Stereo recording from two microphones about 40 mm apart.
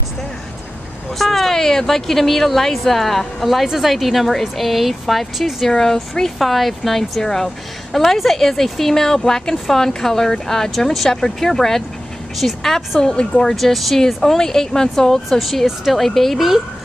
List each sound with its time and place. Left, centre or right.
1.1 s a woman's voice: centre
5.8 s a woman's voice: centre
13.0 s speech: left
13.4 s a woman's voice: centre
15.2 s speech: centre